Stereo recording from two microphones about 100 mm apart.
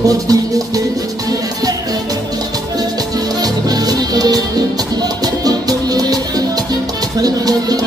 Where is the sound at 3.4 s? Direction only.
40° right (ahead or behind).